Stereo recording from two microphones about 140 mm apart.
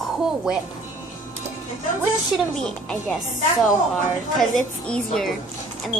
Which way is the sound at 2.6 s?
5° left (ahead or behind).